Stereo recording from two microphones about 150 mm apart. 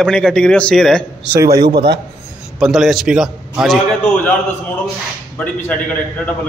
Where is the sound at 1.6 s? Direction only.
90° right.